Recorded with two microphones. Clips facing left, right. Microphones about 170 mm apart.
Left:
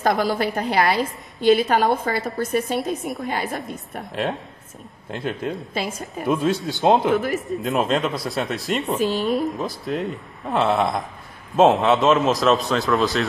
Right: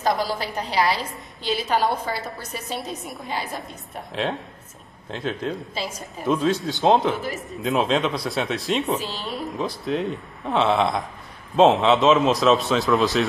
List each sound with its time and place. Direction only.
0.0 s a woman's voice: 55° left (ahead or behind)
3.0 s a man's voice: centre (ahead or behind)
3.3 s a woman's voice: 55° left (ahead or behind)
3.6 s a man's voice: centre (ahead or behind)
5.8 s a woman's voice: 50° left (ahead or behind)
6.4 s a man's voice: centre (ahead or behind)
8.9 s a woman's voice: 50° left (ahead or behind)
9.6 s a man's voice: centre (ahead or behind)